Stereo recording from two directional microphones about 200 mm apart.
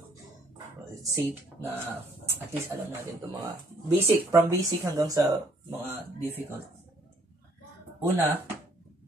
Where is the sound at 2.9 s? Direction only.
15° right (ahead or behind).